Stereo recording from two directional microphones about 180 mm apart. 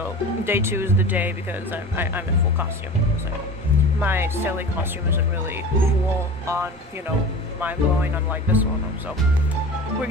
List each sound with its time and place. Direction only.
0.5 s speech: 15° right (ahead or behind)
4.0 s speech: 10° right (ahead or behind)
6.4 s speech: 15° right (ahead or behind)